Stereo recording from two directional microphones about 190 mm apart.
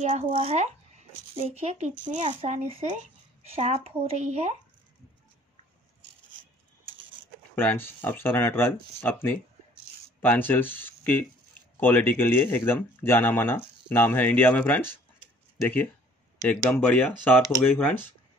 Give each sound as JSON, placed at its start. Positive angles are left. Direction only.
{"t": 0.0, "sound": "speech", "side_deg": -40}
{"t": 7.5, "sound": "speech", "side_deg": 10}
{"t": 16.8, "sound": "speech", "side_deg": 10}